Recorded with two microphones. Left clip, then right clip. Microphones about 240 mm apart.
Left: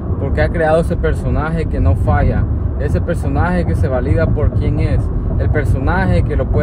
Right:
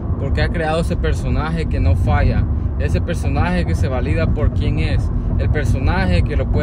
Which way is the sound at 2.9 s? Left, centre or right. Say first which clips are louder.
Left 3 dB; left.